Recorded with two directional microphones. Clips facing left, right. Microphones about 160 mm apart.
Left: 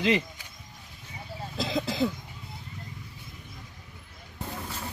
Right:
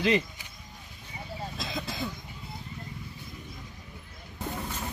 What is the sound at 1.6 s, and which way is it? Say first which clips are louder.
Speech: left 10 dB; 85° left.